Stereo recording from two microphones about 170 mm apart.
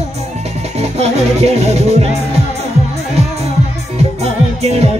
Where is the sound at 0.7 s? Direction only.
40° right (ahead or behind).